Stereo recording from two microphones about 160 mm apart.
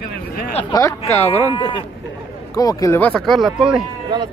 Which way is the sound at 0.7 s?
20° left (ahead or behind).